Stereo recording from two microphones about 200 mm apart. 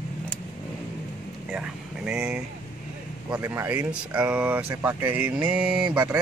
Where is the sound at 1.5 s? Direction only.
5° right (ahead or behind).